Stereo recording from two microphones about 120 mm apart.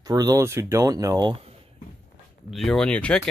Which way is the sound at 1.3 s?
55° right (ahead or behind).